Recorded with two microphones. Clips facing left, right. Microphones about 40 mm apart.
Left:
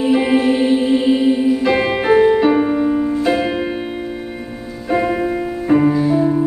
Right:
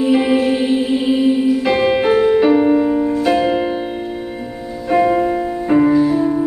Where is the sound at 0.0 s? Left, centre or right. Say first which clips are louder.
Even; centre.